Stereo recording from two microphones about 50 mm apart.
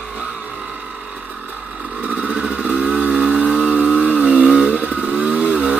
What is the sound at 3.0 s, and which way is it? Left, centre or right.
Vehicle, right.